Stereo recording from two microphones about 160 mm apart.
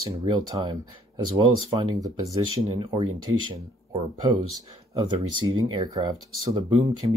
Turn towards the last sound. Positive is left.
turn(degrees=-30)  # may be behind; listen again after turning